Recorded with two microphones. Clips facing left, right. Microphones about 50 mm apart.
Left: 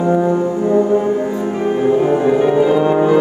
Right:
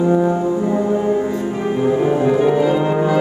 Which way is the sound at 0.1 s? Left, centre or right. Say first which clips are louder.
Left 1 dB; centre.